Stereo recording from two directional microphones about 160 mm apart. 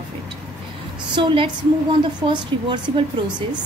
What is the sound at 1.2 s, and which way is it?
A woman's voice, 30° right (ahead or behind).